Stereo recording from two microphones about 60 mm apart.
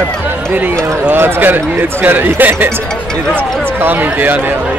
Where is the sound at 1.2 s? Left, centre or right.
Right.